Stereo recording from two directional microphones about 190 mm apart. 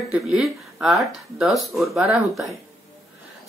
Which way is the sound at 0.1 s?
Centre (ahead or behind).